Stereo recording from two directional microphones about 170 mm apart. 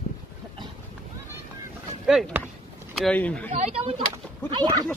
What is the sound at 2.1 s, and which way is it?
A man's voice, centre (ahead or behind).